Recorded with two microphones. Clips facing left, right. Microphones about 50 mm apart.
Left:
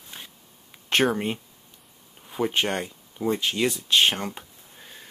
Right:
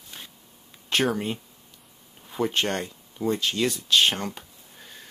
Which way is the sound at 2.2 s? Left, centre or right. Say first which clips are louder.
Left 1 dB; centre.